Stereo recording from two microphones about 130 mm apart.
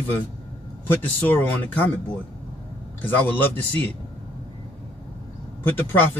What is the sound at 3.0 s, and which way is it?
Speech, 15° left (ahead or behind).